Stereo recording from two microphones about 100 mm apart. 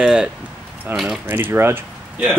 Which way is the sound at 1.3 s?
20° right (ahead or behind).